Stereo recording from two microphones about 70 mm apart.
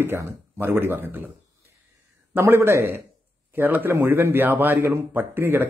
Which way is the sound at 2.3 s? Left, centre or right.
Right.